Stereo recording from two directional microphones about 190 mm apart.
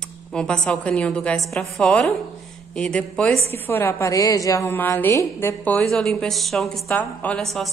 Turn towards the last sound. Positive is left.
turn(degrees=0)  # may be behind; listen again after turning